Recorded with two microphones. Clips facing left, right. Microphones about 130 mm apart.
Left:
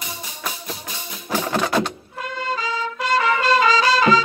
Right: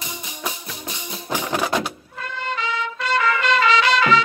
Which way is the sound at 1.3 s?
15° right (ahead or behind).